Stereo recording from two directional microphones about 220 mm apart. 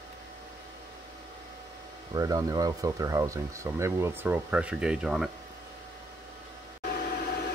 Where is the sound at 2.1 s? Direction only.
15° right (ahead or behind).